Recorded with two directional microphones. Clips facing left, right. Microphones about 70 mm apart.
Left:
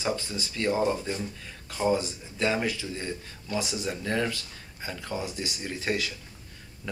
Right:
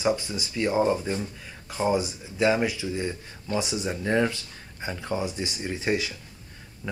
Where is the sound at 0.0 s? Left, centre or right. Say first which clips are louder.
Right 5 dB; centre.